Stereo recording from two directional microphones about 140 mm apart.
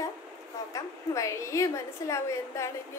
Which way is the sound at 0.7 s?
20° left (ahead or behind).